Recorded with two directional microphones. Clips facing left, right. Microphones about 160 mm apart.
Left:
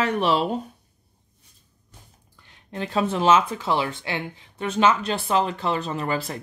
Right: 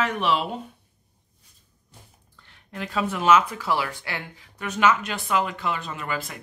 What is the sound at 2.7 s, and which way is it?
Speech, 25° left (ahead or behind).